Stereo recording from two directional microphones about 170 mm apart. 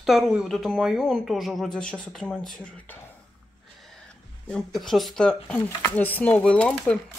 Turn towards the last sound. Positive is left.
turn(degrees=5)  # may be behind; listen again after turning